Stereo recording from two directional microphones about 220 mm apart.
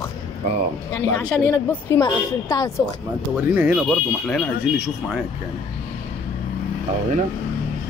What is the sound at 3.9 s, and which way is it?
Speech, 5° left (ahead or behind).